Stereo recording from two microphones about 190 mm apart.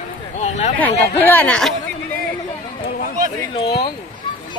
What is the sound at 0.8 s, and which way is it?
Speech, 10° left (ahead or behind).